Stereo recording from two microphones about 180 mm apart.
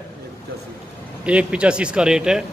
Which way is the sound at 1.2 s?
5° right (ahead or behind).